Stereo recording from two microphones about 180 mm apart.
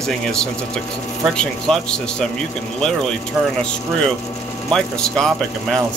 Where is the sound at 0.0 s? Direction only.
5° left (ahead or behind).